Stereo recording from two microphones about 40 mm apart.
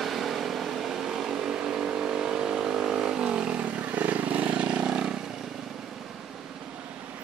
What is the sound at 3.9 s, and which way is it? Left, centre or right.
Vehicle, right.